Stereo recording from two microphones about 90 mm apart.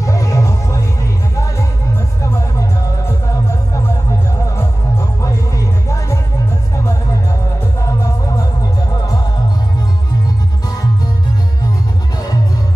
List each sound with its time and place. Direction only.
0.0 s music: 40° left (ahead or behind)
2.2 s music: 30° left (ahead or behind)
4.6 s music: 35° left (ahead or behind)